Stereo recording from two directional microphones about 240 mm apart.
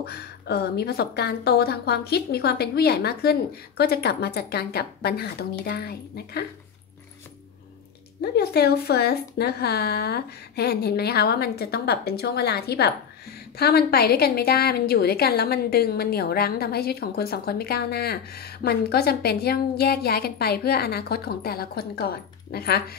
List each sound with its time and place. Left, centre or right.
0.0 s a woman's voice: left
8.2 s a woman's voice: left